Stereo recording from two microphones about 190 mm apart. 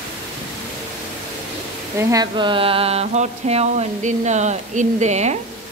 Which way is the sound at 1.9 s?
20° right (ahead or behind).